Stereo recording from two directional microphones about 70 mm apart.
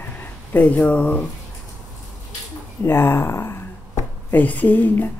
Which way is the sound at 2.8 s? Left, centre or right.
Left.